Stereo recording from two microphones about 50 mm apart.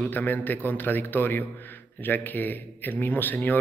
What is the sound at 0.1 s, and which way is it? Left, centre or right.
Speech, left.